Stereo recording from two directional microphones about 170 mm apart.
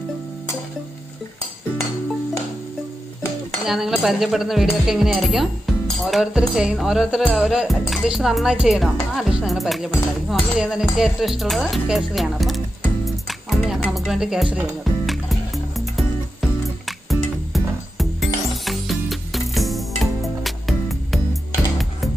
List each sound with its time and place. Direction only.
3.6 s speech: centre (ahead or behind)
6.0 s music: centre (ahead or behind)